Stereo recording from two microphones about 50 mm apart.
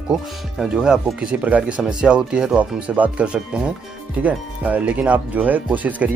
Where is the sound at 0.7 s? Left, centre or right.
Centre.